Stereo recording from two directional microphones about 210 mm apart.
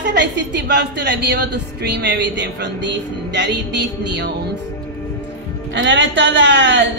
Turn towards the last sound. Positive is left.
turn(degrees=-60)  # may be behind; listen again after turning